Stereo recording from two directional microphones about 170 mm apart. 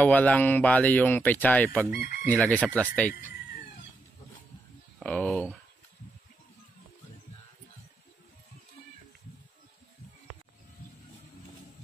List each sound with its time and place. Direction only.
0.0 s speech: 10° left (ahead or behind)
1.9 s chicken: 70° left (ahead or behind)
2.2 s speech: 10° left (ahead or behind)
4.9 s speech: 5° left (ahead or behind)